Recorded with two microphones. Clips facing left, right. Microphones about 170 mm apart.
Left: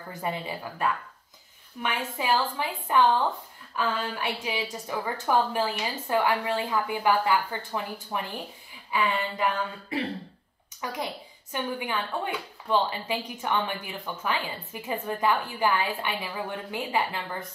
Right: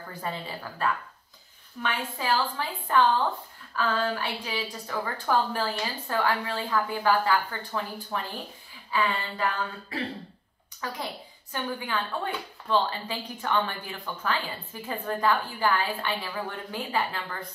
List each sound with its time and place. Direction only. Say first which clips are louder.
0.2 s a woman's voice: left 3 dB; 15° left (ahead or behind)
8.9 s a sound: left 1 dB; 20° left (ahead or behind)
10.8 s a woman's voice: left 2 dB; 15° left (ahead or behind)